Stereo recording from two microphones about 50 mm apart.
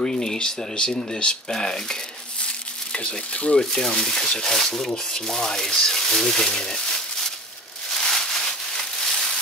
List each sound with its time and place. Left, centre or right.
0.0 s speech: centre
2.4 s crumpling: centre
3.5 s speech: centre
7.9 s a sound: centre